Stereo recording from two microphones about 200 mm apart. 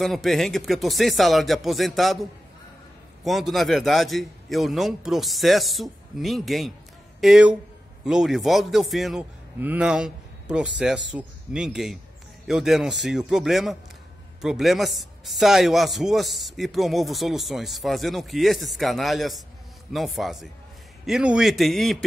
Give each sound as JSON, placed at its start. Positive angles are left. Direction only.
{"t": 0.0, "sound": "speech", "side_deg": 0}
{"t": 3.3, "sound": "a man's voice", "side_deg": 0}